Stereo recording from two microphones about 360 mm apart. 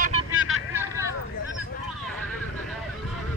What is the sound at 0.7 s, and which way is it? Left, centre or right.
Vehicle, centre.